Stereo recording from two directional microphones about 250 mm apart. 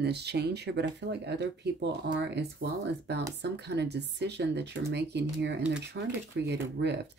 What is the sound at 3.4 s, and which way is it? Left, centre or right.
Speech, right.